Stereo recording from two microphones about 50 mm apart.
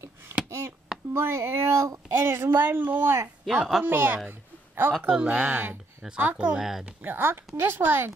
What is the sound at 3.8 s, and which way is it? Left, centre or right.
Speech, right.